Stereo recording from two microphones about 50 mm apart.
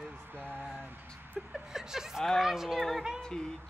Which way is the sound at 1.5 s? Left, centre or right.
Centre.